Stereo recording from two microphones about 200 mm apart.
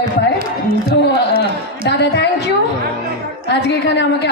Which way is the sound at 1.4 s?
60° left (ahead or behind).